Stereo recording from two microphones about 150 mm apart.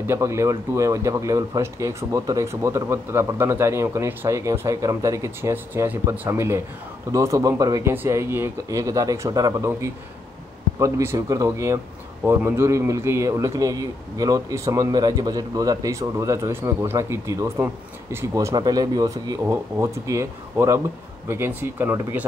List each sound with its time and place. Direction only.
0.0 s speech: 20° right (ahead or behind)